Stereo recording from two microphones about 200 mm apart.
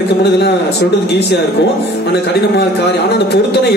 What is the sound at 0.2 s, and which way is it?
A man's voice, 55° left (ahead or behind).